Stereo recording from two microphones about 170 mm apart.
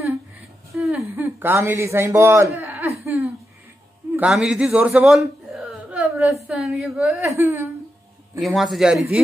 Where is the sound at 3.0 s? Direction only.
15° right (ahead or behind).